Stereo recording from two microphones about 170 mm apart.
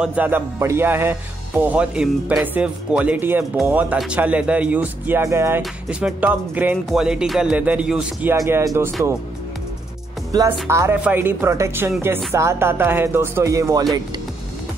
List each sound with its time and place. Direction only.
0.0 s speech: 10° right (ahead or behind)
5.6 s speech: 5° right (ahead or behind)
10.3 s speech: 20° right (ahead or behind)